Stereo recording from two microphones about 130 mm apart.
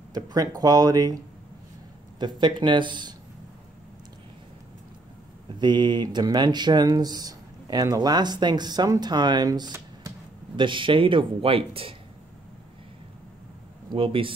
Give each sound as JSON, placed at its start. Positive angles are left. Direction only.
{"t": 0.1, "sound": "speech", "side_deg": -30}
{"t": 5.6, "sound": "speech", "side_deg": -35}
{"t": 10.5, "sound": "speech", "side_deg": -40}
{"t": 13.8, "sound": "speech", "side_deg": -45}